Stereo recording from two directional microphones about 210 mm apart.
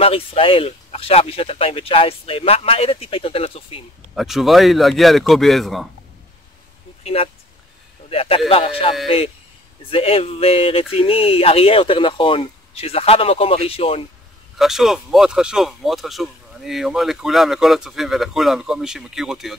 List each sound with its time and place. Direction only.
0.0 s speech: 25° left (ahead or behind)
4.1 s speech: centre (ahead or behind)
7.0 s a sound: 30° left (ahead or behind)
8.1 s speech: 25° left (ahead or behind)
14.6 s speech: centre (ahead or behind)